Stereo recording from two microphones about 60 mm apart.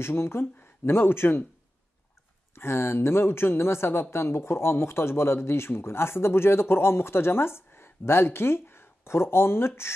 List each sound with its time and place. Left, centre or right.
0.0 s speech: left
2.5 s speech: left